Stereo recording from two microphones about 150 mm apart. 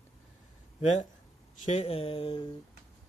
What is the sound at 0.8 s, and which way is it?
Speech, 50° left (ahead or behind).